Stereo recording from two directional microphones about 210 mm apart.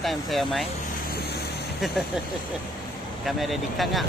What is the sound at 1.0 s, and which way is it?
Vehicle, 45° left (ahead or behind).